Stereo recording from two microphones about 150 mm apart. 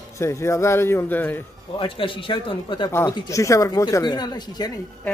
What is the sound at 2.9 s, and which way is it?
Speech, 20° left (ahead or behind).